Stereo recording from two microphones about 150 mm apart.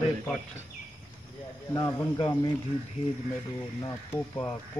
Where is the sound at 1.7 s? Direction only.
25° left (ahead or behind).